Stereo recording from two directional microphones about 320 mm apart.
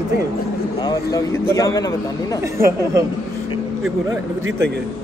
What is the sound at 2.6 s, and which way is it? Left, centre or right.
Speech, centre.